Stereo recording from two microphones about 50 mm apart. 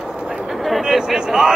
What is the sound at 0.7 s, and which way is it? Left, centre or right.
Speech, centre.